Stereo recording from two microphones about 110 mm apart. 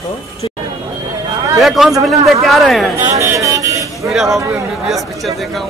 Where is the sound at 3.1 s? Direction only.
30° right (ahead or behind).